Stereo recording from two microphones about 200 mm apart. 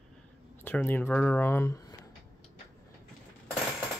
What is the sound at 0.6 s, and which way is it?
Speech, 10° left (ahead or behind).